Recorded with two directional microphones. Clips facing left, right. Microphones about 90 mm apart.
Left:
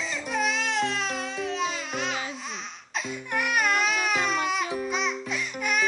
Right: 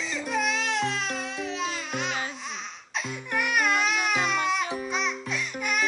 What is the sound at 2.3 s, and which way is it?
Baby cry, centre (ahead or behind).